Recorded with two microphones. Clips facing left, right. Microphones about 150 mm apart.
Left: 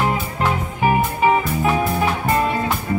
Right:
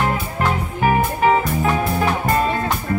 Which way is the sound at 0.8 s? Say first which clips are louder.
Even; 15° left (ahead or behind).